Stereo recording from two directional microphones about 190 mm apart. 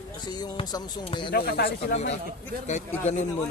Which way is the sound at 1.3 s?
55° left (ahead or behind).